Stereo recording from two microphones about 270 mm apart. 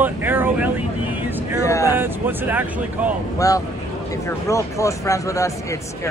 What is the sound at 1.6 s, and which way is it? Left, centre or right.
Speech, centre.